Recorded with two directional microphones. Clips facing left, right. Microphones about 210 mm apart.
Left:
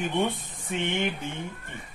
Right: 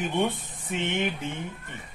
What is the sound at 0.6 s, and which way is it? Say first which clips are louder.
Music: even; 5° right (ahead or behind).